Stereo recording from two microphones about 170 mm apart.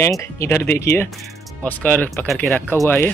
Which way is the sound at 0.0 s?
15° left (ahead or behind).